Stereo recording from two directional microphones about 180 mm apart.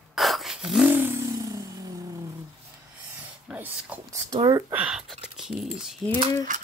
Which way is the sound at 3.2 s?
10° right (ahead or behind).